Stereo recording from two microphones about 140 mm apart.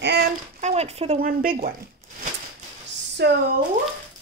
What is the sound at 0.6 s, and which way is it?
Speech, 50° right (ahead or behind).